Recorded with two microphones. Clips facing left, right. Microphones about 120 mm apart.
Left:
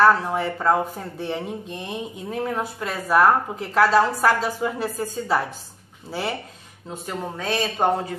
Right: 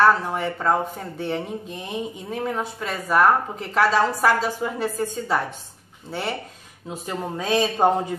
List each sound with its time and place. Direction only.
0.0 s speech: centre (ahead or behind)
6.9 s speech: 10° right (ahead or behind)